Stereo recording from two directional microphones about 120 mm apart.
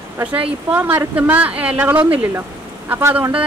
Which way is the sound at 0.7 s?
15° right (ahead or behind).